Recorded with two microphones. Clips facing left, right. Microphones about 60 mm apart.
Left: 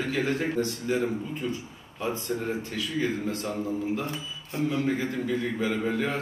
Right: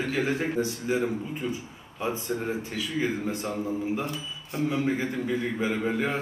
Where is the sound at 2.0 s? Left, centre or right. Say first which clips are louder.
Even; centre.